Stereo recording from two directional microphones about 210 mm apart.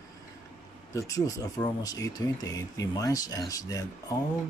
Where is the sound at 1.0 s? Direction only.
15° left (ahead or behind).